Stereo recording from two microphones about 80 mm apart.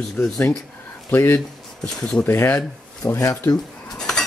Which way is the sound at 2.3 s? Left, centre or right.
Left.